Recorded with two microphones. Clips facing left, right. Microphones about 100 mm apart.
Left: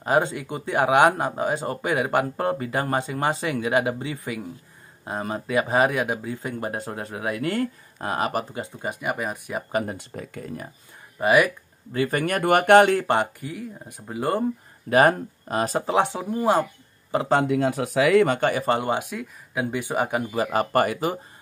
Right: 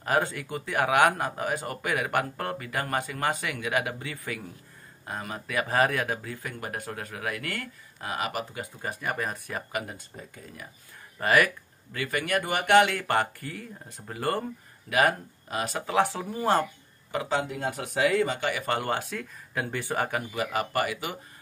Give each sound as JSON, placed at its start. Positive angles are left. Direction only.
{"t": 0.0, "sound": "speech", "side_deg": 20}
{"t": 8.8, "sound": "speech", "side_deg": 15}
{"t": 9.9, "sound": "speech", "side_deg": 70}
{"t": 11.1, "sound": "speech", "side_deg": 15}
{"t": 11.9, "sound": "speech", "side_deg": 35}
{"t": 12.4, "sound": "speech", "side_deg": 50}
{"t": 13.0, "sound": "speech", "side_deg": 20}
{"t": 14.9, "sound": "speech", "side_deg": 40}
{"t": 15.9, "sound": "speech", "side_deg": 20}
{"t": 17.1, "sound": "speech", "side_deg": 30}
{"t": 17.5, "sound": "speech", "side_deg": 90}
{"t": 18.4, "sound": "speech", "side_deg": 35}
{"t": 18.8, "sound": "speech", "side_deg": 15}
{"t": 20.3, "sound": "speech", "side_deg": 40}